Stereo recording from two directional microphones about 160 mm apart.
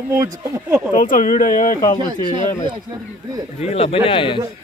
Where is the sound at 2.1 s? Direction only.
30° right (ahead or behind).